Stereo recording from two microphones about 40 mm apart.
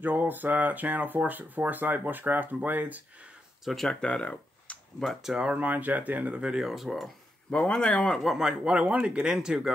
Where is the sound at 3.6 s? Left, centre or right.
Centre.